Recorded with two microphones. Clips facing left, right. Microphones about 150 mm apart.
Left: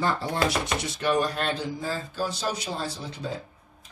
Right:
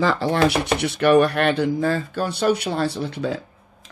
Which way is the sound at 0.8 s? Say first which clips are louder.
Right 11 dB; 65° right (ahead or behind).